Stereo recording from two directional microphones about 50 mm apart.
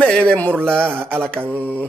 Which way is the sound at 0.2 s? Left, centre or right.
Left.